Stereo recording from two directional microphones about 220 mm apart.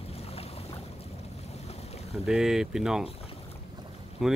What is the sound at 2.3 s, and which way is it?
Speech, centre (ahead or behind).